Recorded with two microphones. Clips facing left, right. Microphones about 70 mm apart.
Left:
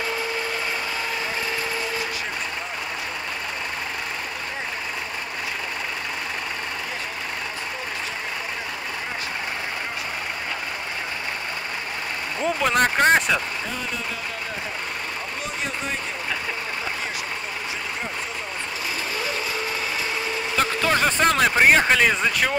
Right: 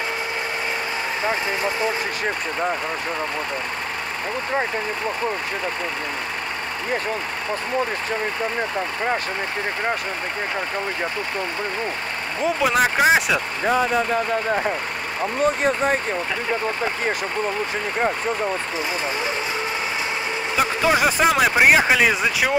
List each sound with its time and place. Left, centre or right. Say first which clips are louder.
12.4 s speech: right 2 dB; centre
13.7 s speech: right 11 dB; right
20.5 s speech: right 3 dB; centre